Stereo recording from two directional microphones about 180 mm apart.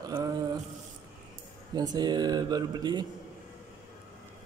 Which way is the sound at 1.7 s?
20° right (ahead or behind).